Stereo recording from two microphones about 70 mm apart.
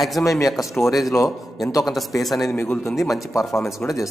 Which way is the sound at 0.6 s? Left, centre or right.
Left.